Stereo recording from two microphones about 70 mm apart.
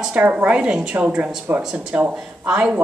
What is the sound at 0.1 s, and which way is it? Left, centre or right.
A woman's voice, right.